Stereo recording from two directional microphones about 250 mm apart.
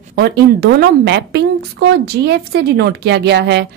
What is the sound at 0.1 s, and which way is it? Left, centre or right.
A woman's voice, right.